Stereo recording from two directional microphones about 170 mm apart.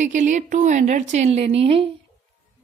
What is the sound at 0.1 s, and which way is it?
A woman's voice, 45° right (ahead or behind).